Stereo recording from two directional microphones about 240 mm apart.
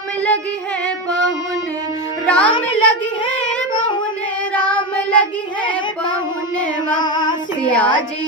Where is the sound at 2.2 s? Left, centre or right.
Centre.